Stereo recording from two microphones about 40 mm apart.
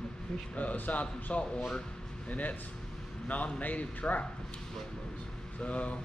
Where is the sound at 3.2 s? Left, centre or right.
Left.